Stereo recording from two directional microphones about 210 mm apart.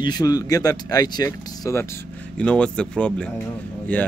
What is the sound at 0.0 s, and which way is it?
Speech, 20° left (ahead or behind).